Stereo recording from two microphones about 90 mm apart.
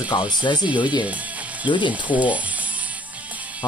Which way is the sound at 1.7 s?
60° left (ahead or behind).